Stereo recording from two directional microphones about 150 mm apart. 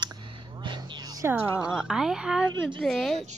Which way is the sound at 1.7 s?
5° right (ahead or behind).